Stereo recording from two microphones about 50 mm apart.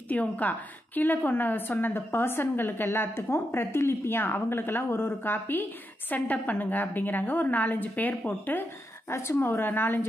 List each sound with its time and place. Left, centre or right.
0.1 s a woman's voice: left